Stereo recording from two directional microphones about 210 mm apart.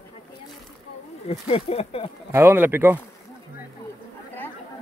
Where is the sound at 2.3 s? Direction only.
10° right (ahead or behind).